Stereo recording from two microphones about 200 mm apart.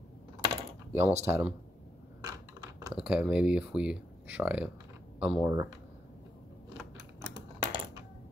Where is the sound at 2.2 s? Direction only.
20° right (ahead or behind).